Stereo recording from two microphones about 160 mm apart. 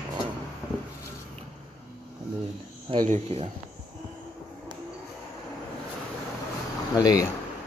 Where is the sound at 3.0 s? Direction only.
40° right (ahead or behind).